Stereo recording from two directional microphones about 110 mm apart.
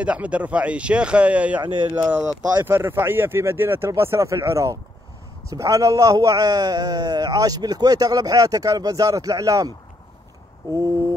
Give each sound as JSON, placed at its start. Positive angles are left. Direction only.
{"t": 0.0, "sound": "speech", "side_deg": -10}
{"t": 2.6, "sound": "a man's voice", "side_deg": -20}